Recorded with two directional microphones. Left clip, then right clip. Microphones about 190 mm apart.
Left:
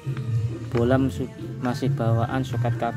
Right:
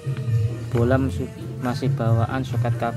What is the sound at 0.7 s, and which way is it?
Speech, 10° left (ahead or behind).